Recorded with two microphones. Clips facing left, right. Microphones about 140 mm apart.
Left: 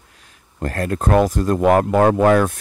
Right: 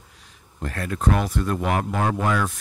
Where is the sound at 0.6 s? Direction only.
45° left (ahead or behind).